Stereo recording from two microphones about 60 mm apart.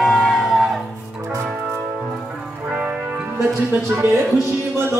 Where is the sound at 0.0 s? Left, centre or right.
Centre.